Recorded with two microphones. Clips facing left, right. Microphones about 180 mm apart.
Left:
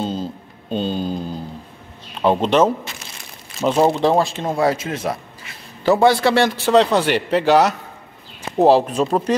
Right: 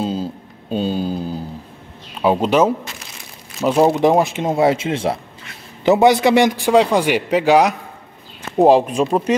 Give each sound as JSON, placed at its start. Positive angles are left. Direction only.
{"t": 0.0, "sound": "a sound", "side_deg": -5}
{"t": 2.2, "sound": "a man's voice", "side_deg": -5}
{"t": 3.9, "sound": "a man's voice", "side_deg": -15}